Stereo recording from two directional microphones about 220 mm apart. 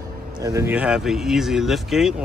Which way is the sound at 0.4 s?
15° right (ahead or behind).